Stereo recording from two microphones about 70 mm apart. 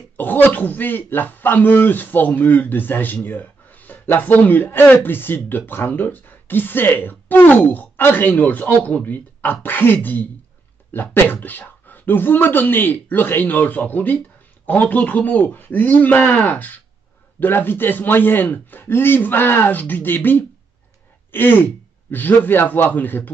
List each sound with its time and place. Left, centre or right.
0.2 s a man's voice: left